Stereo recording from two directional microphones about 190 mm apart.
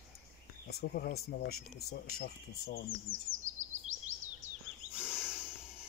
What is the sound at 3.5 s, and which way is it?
Bird vocalization, 40° right (ahead or behind).